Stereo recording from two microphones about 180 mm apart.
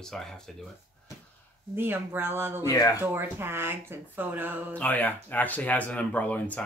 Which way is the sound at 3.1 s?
10° right (ahead or behind).